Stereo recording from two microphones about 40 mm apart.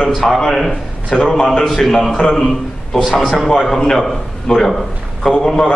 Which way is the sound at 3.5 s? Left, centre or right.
Centre.